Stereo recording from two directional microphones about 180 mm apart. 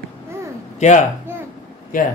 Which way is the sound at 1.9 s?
50° left (ahead or behind).